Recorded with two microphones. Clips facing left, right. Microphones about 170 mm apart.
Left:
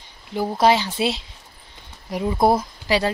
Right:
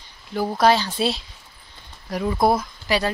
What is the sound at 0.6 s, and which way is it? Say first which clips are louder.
Speech: even; 25° left (ahead or behind).